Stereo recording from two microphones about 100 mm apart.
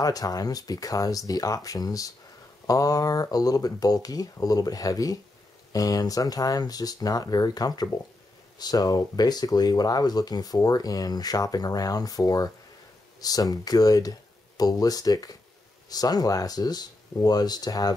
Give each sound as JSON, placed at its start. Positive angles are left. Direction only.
{"t": 0.0, "sound": "speech", "side_deg": 40}